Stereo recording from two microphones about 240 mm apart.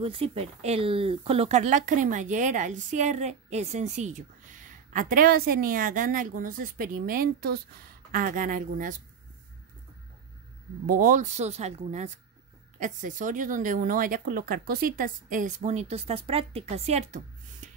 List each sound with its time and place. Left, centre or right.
0.0 s speech: right
10.9 s speech: right